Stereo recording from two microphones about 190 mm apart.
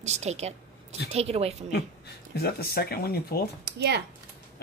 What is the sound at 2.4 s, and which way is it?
Speech, 55° left (ahead or behind).